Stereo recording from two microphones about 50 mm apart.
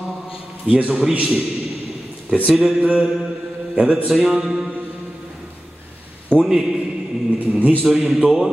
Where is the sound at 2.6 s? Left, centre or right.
Right.